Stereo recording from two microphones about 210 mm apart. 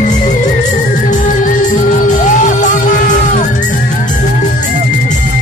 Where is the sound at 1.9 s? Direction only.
35° left (ahead or behind).